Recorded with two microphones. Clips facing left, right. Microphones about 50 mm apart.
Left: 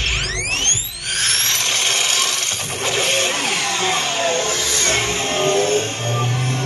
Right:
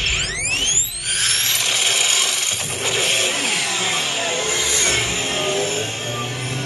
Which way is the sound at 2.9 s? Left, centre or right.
Centre.